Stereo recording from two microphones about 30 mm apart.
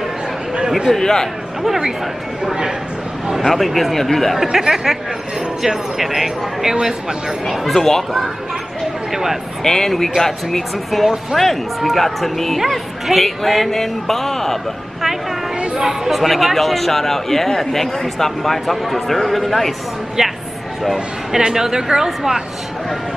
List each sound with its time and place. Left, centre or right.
0.9 s a man's voice: centre
3.4 s speech: centre
4.4 s speech: centre
7.6 s a man's voice: centre
9.1 s a sound: centre
9.6 s a man's voice: centre
10.9 s a man's voice: centre
15.8 s speech: centre
16.1 s a man's voice: centre
20.2 s music: centre
21.4 s a woman's voice: centre